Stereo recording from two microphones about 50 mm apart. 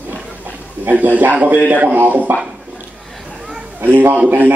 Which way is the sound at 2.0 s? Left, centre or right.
Right.